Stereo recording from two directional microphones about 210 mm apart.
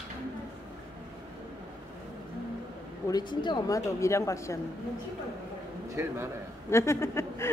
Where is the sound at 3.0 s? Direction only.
20° left (ahead or behind).